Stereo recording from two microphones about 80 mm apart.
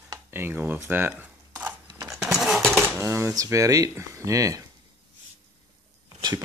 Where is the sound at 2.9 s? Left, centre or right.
Right.